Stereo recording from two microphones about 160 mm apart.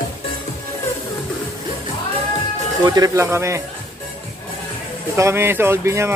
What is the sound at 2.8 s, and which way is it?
Speech, 25° right (ahead or behind).